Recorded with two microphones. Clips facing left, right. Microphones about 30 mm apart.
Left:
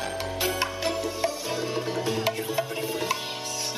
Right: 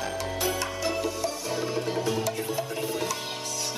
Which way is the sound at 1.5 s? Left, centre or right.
Centre.